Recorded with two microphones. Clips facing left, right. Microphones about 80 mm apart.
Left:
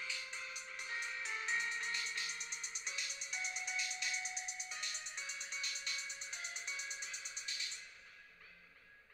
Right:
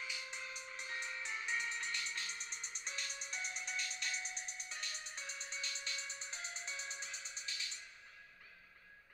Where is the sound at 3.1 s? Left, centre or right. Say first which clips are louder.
Right 1 dB; right.